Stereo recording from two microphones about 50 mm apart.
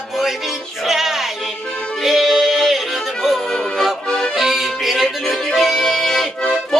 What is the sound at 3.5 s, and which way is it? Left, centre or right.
Music, centre.